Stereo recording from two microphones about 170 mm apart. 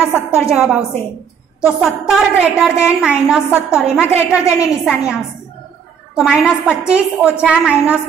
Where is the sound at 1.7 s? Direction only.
5° right (ahead or behind).